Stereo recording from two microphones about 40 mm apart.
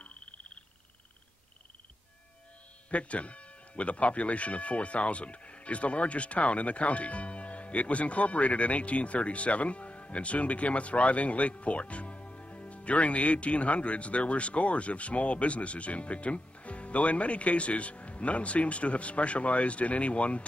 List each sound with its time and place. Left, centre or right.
2.9 s speech: left